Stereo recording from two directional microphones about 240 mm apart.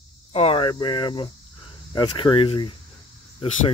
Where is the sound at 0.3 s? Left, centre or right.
Left.